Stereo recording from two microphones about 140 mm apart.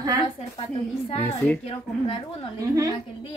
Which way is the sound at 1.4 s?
10° left (ahead or behind).